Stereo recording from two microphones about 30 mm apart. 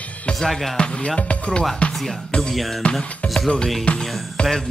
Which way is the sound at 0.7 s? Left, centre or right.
Left.